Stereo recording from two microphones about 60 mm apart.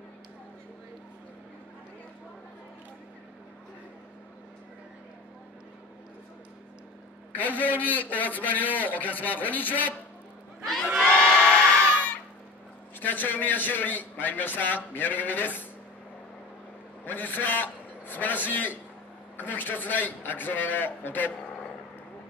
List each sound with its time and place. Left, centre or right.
7.3 s a man's voice: left
10.6 s crowd: centre
11.1 s music: left
13.0 s a man's voice: left
17.0 s a man's voice: left